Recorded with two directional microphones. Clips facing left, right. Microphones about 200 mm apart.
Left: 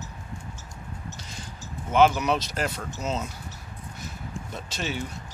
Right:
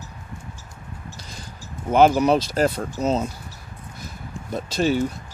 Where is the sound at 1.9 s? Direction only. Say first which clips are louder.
Right 5 dB; 40° right (ahead or behind).